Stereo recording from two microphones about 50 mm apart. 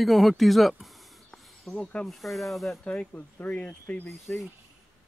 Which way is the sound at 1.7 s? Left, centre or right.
Left.